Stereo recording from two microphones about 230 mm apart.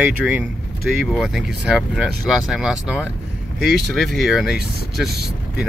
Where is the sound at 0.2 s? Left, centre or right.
Centre.